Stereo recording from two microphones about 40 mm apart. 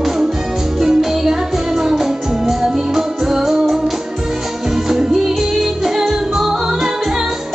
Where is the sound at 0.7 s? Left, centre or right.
Centre.